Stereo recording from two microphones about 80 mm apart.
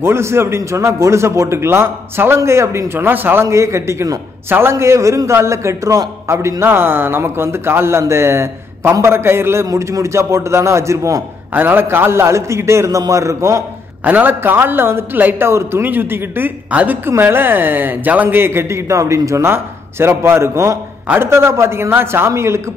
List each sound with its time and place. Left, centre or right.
0.0 s speech: right
3.4 s speech: right
11.5 s speech: right
14.0 s speech: right